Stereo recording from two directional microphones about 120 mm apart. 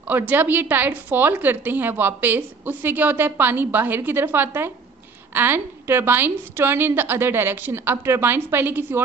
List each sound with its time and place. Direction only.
0.1 s a woman's voice: 15° right (ahead or behind)